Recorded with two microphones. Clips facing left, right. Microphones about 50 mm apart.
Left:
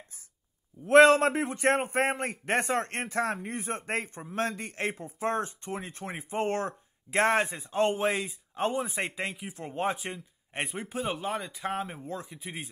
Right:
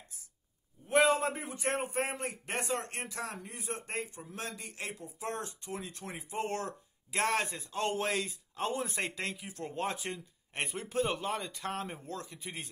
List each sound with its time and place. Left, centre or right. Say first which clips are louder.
0.8 s a man's voice: left 9 dB; left; by 12.5 s centre